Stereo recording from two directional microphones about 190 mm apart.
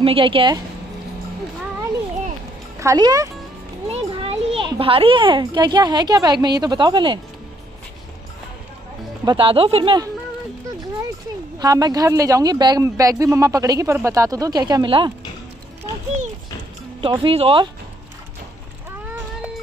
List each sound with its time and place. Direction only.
0.0 s speech: 30° right (ahead or behind)
2.8 s speech: 20° right (ahead or behind)
3.9 s a child's voice: 30° right (ahead or behind)
9.2 s speech: 25° right (ahead or behind)
11.6 s speech: 20° right (ahead or behind)
17.0 s speech: 25° right (ahead or behind)